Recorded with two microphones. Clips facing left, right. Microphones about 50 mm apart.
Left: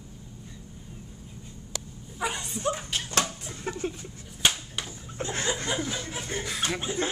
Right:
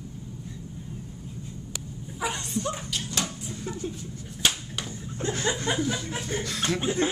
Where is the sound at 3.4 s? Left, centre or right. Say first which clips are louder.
Left 1 dB; left.